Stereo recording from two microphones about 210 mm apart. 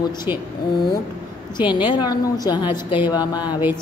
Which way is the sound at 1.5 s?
20° left (ahead or behind).